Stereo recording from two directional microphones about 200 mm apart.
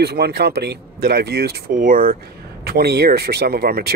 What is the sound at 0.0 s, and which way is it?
Speech, 55° right (ahead or behind).